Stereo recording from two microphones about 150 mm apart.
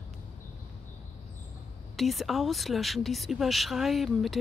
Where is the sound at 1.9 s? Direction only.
Centre (ahead or behind).